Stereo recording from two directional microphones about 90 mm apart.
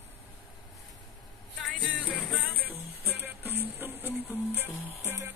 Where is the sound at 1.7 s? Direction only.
15° right (ahead or behind).